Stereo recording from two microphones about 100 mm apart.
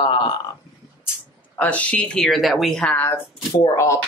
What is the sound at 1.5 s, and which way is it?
Speech, 15° left (ahead or behind).